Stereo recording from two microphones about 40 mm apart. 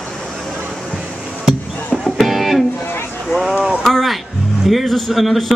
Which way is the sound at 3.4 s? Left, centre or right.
Centre.